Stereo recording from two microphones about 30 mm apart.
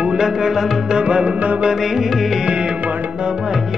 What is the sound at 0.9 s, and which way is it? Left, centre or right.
Music, right.